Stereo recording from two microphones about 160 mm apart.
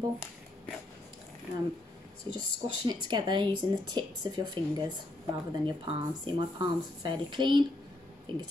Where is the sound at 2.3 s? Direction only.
30° right (ahead or behind).